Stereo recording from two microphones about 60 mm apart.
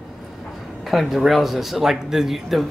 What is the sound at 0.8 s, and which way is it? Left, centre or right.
Speech, centre.